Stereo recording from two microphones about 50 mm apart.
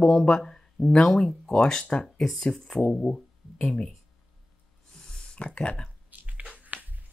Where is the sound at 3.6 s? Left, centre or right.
Centre.